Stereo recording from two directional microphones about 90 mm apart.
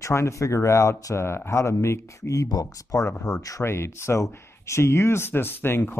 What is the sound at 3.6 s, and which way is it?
Speech, 30° left (ahead or behind).